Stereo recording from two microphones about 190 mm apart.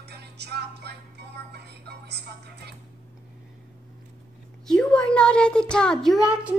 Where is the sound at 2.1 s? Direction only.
60° right (ahead or behind).